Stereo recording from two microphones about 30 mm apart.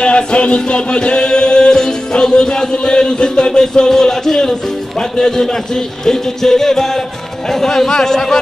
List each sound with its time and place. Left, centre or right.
0.0 s music: left
2.1 s a man's voice: left
3.9 s a man's voice: centre
5.1 s music: centre